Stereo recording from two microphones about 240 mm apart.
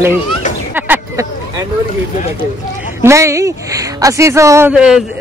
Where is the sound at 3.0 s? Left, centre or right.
Centre.